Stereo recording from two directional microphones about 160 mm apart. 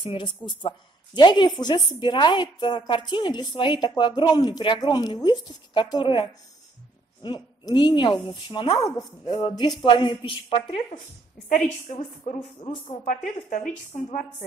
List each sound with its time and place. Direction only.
0.0 s a woman's voice: 30° left (ahead or behind)
11.4 s a woman's voice: 55° left (ahead or behind)
12.5 s a woman's voice: 40° left (ahead or behind); by 14.0 s 55° left (ahead or behind)